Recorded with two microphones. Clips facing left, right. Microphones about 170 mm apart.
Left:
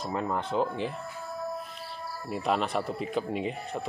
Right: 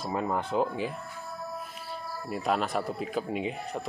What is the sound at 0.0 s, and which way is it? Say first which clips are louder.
Speech: right 1 dB; 5° right (ahead or behind).